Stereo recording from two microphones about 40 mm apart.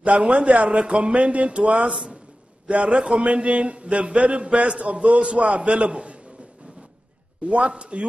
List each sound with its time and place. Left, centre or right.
0.0 s a man's voice: right
7.4 s a man's voice: right